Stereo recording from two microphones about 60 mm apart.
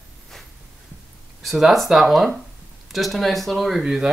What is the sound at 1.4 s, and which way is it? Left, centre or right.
Speech, centre.